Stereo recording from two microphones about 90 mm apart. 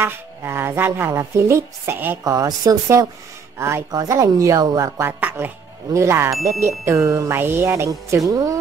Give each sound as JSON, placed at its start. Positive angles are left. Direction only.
{"t": 0.0, "sound": "speech", "side_deg": -25}
{"t": 2.2, "sound": "speech", "side_deg": -40}
{"t": 3.5, "sound": "speech", "side_deg": -30}
{"t": 3.9, "sound": "speech", "side_deg": -40}
{"t": 5.0, "sound": "speech", "side_deg": -25}
{"t": 8.3, "sound": "speech", "side_deg": -40}